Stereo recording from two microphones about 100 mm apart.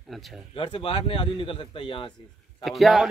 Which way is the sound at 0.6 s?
70° left (ahead or behind).